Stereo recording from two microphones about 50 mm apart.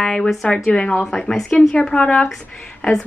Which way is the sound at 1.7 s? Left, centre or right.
Centre.